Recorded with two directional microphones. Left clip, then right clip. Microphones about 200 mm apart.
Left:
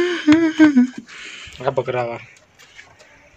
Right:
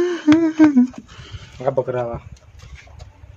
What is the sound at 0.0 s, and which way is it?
Humming, 20° right (ahead or behind).